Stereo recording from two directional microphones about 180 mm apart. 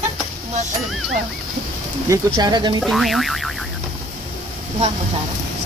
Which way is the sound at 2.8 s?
Centre (ahead or behind).